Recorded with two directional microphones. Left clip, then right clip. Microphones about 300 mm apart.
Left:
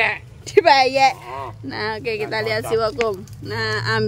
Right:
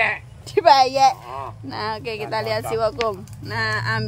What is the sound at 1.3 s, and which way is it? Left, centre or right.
Speech, left.